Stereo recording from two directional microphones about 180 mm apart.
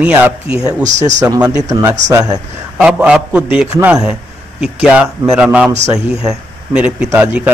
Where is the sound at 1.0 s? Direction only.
20° right (ahead or behind).